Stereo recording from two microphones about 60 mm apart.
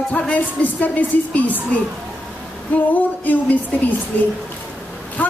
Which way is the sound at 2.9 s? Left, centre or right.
Left.